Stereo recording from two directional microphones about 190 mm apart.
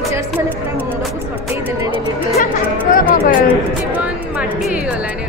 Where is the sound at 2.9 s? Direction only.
45° left (ahead or behind).